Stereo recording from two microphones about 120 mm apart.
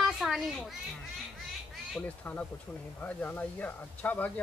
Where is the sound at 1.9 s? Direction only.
10° left (ahead or behind).